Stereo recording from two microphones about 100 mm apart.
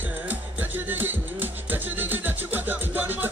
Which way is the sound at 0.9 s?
20° right (ahead or behind).